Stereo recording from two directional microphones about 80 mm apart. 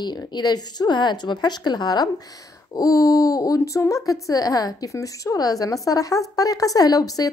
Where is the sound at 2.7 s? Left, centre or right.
Left.